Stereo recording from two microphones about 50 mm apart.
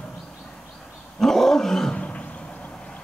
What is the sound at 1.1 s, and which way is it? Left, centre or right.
Roaring cats, centre.